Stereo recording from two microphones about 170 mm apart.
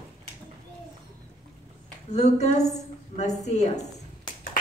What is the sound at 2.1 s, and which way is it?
A woman's voice, 45° left (ahead or behind).